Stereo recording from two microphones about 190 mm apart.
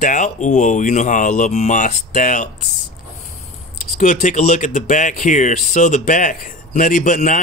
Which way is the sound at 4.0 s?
40° left (ahead or behind).